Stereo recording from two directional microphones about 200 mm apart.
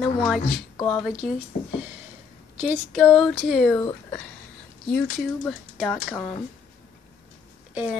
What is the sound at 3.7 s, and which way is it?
Speech, 15° left (ahead or behind).